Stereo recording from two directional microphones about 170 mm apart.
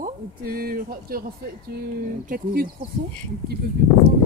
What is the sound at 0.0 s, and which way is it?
Speech, 60° right (ahead or behind).